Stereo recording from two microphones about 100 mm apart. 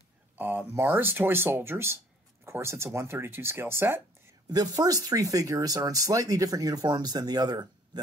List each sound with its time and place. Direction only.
0.4 s speech: 20° right (ahead or behind)
4.5 s speech: 40° right (ahead or behind)